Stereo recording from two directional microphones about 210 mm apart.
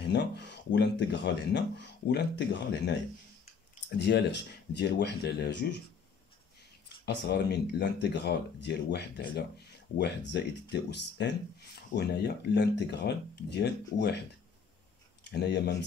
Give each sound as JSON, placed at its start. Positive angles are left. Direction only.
{"t": 0.0, "sound": "speech", "side_deg": 55}
{"t": 4.0, "sound": "speech", "side_deg": 55}
{"t": 7.1, "sound": "speech", "side_deg": 50}
{"t": 15.2, "sound": "speech", "side_deg": 55}